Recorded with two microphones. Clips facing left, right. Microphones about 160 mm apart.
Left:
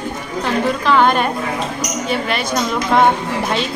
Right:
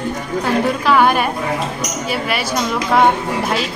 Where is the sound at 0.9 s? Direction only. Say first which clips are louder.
Even; 10° right (ahead or behind).